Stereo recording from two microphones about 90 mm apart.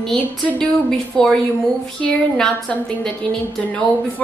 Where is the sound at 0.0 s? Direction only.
5° left (ahead or behind).